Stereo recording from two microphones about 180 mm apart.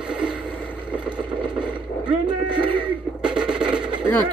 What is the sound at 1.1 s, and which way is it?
Vehicle, 25° right (ahead or behind).